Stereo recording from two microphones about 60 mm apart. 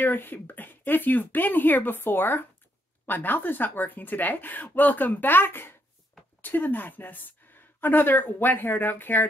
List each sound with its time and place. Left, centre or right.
0.0 s a woman's voice: left